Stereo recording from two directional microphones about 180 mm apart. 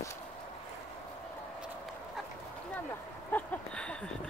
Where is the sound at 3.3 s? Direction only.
10° left (ahead or behind).